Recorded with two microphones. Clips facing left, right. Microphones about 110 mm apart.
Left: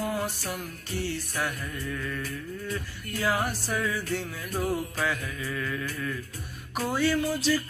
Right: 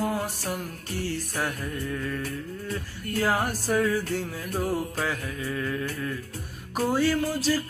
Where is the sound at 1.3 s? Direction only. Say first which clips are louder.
Right 2 dB; 35° right (ahead or behind).